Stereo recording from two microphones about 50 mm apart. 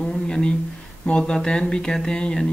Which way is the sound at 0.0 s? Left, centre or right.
Centre.